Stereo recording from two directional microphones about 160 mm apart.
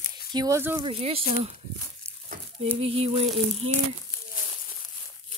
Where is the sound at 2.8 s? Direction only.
40° right (ahead or behind).